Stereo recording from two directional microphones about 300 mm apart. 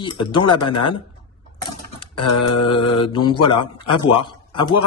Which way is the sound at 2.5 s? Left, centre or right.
Centre.